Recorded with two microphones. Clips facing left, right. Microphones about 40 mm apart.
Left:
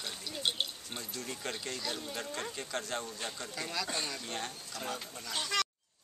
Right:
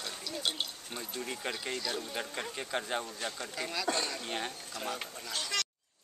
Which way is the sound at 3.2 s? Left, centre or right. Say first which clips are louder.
Right 2 dB; centre.